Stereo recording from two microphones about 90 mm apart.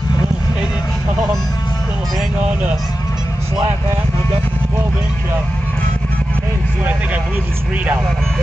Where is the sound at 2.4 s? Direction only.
15° right (ahead or behind).